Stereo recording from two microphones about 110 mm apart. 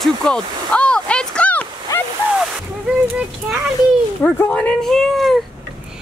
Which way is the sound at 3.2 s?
15° right (ahead or behind).